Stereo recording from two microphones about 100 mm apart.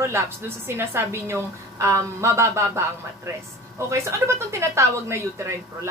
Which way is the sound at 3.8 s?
30° right (ahead or behind).